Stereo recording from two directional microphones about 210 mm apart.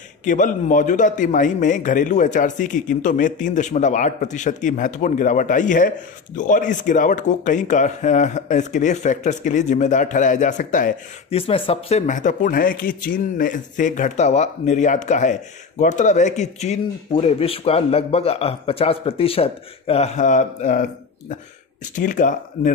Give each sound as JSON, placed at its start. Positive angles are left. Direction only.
{"t": 0.2, "sound": "a man's voice", "side_deg": 35}
{"t": 11.3, "sound": "a man's voice", "side_deg": 25}
{"t": 21.9, "sound": "a man's voice", "side_deg": 40}